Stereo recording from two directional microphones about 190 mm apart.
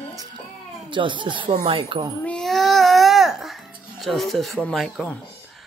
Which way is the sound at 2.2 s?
5° left (ahead or behind).